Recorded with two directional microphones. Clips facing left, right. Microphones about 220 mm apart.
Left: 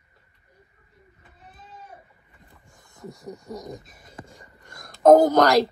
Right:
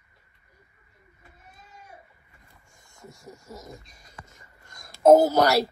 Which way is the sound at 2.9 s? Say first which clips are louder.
Left 7 dB; centre (ahead or behind).